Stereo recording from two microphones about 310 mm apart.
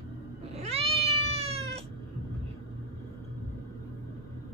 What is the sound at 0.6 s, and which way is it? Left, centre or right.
Cat, centre.